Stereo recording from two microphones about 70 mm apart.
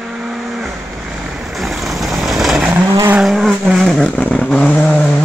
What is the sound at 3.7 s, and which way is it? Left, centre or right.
Vehicle, centre.